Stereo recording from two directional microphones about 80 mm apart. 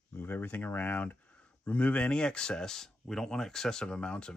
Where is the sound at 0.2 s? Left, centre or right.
Left.